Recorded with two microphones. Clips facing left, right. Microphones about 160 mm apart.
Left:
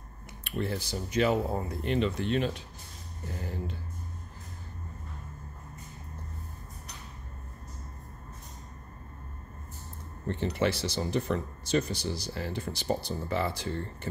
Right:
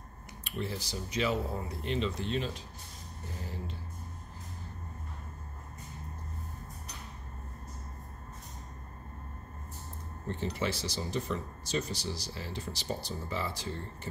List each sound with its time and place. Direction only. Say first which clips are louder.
0.4 s speech: left 4 dB; 60° left (ahead or behind)
10.2 s speech: left 5 dB; 65° left (ahead or behind)